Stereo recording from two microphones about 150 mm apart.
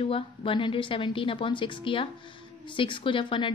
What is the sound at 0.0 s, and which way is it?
A woman's voice, 35° left (ahead or behind).